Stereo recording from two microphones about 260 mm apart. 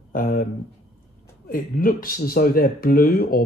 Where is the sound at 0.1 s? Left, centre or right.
Left.